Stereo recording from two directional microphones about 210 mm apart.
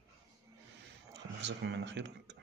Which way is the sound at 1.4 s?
60° right (ahead or behind).